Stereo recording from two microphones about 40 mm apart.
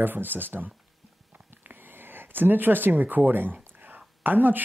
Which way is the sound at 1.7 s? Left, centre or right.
Right.